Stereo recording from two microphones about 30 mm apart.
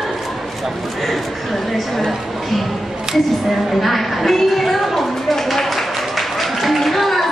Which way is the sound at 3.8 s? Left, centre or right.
Centre.